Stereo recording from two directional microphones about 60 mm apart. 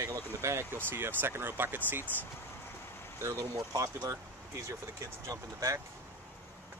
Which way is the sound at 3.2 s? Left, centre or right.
Right.